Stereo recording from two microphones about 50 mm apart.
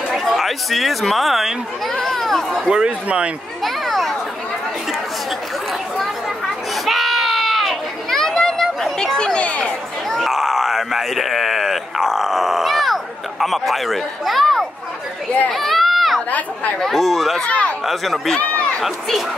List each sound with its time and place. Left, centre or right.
0.2 s speech: centre
2.7 s a man's voice: right
3.6 s a sound: centre
6.4 s children playing: centre
8.9 s speech: centre
10.0 s a sound: centre
15.5 s run: centre
16.3 s speech: left
16.8 s speech: centre
17.4 s speech: left
17.8 s speech: centre